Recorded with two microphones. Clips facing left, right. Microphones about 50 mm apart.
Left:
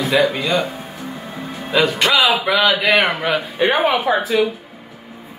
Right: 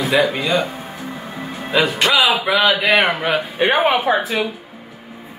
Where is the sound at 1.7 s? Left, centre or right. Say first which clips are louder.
Even; centre.